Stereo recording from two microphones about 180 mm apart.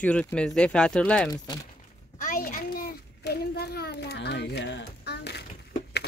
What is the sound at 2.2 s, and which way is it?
A child's voice, 50° left (ahead or behind).